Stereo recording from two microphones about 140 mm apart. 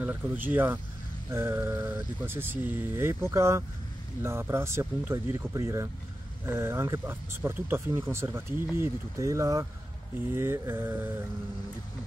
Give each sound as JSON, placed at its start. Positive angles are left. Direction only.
{"t": 0.0, "sound": "speech", "side_deg": -15}